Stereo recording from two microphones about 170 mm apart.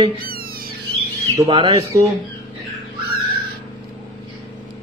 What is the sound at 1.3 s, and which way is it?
Speech, 20° right (ahead or behind).